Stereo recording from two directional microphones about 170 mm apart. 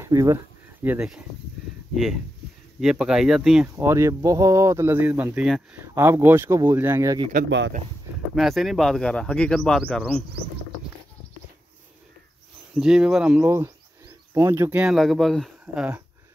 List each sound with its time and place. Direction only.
0.0 s speech: 15° right (ahead or behind)
0.8 s speech: 5° right (ahead or behind)
2.8 s speech: centre (ahead or behind)
3.6 s speech: 15° right (ahead or behind)
7.4 s speech: 90° right
8.4 s speech: centre (ahead or behind)
12.7 s speech: 5° right (ahead or behind)